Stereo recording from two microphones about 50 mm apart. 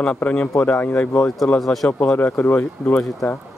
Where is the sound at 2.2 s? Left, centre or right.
Left.